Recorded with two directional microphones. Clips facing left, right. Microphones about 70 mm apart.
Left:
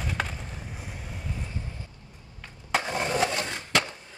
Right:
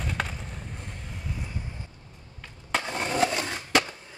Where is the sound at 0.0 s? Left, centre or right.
Centre.